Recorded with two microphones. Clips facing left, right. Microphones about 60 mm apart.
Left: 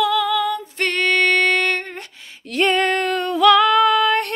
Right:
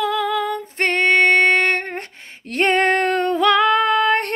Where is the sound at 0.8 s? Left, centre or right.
Right.